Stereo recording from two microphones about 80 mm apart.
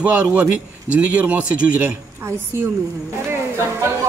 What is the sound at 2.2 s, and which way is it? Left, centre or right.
Speech, right.